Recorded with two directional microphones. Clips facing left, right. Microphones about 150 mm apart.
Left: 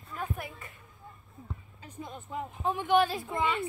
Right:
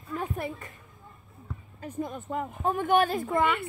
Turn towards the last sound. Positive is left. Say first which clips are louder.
# right 5 dB
turn(degrees=-55)  # may be behind; listen again after turning